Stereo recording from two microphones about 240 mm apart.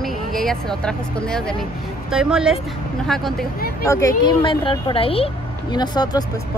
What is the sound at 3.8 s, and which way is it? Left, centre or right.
Speech, centre.